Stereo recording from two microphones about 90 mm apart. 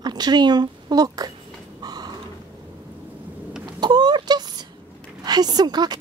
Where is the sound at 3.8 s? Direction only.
50° right (ahead or behind).